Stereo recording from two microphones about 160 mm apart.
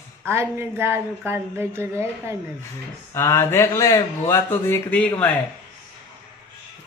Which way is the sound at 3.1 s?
15° left (ahead or behind).